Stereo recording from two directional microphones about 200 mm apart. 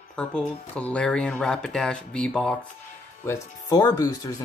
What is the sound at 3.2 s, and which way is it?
Speech, 15° left (ahead or behind).